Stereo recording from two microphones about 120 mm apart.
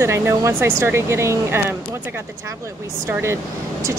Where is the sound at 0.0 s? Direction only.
25° right (ahead or behind).